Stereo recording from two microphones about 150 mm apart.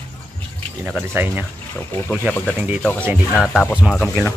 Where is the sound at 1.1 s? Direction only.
10° right (ahead or behind).